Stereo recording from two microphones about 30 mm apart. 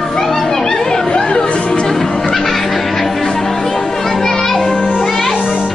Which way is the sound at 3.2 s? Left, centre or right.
Centre.